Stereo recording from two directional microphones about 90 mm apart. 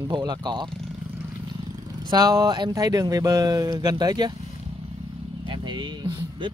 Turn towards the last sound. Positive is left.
turn(degrees=-60)  # may be behind; listen again after turning